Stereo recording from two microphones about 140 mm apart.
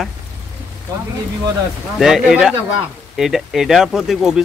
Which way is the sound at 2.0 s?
5° right (ahead or behind).